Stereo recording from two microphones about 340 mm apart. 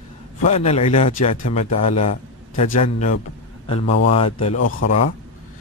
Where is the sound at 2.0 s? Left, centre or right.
Left.